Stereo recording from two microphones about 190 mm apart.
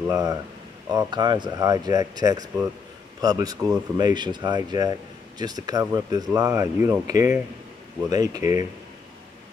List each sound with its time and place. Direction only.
0.1 s speech: 20° right (ahead or behind)
8.4 s speech: 40° left (ahead or behind)